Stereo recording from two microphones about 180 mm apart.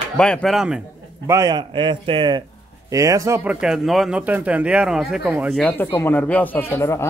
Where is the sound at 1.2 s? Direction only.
20° right (ahead or behind).